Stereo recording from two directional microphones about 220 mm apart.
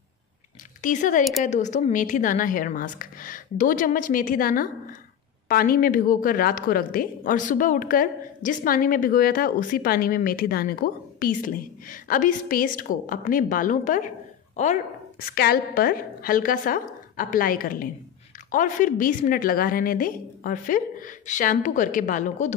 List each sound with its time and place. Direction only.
0.8 s a woman's voice: 35° left (ahead or behind)